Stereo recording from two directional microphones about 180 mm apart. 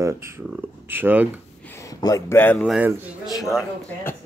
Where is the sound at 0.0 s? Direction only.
15° right (ahead or behind).